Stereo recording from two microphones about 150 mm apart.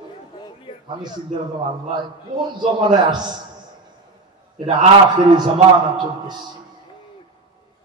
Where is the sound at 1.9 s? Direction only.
30° right (ahead or behind).